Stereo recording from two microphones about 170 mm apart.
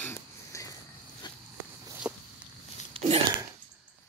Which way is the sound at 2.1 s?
15° right (ahead or behind).